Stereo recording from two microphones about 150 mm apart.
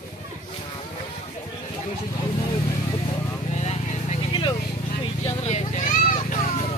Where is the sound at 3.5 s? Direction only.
45° left (ahead or behind).